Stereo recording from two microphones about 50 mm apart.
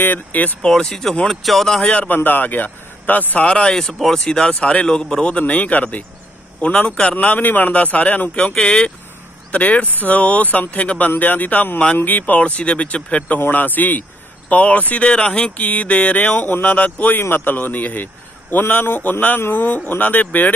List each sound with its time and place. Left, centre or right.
0.0 s a man's voice: left
0.6 s speech: centre
1.2 s speech: centre
1.8 s a man's voice: left
2.1 s speech: left
3.4 s a man's voice: left
3.7 s a man's voice: centre
5.4 s a man's voice: left
6.6 s a man's voice: left
8.5 s speech: centre
9.5 s a man's voice: left
13.5 s a man's voice: left
17.2 s a man's voice: left